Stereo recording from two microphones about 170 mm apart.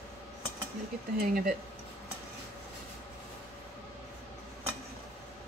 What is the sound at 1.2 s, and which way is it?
Speech, 60° right (ahead or behind).